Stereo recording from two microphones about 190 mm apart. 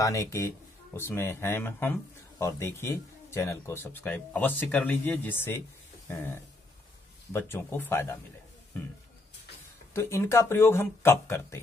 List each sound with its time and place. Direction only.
0.0 s speech: 15° left (ahead or behind)
9.9 s speech: 15° left (ahead or behind)